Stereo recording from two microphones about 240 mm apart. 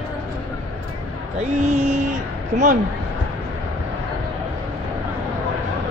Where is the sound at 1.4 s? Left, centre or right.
Right.